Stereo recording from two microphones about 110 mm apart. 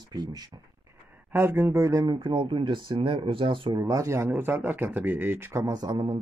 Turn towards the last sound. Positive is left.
turn(degrees=-40)  # may be behind; listen again after turning